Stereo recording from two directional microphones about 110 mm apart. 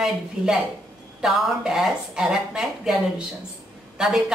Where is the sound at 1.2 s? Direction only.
5° right (ahead or behind).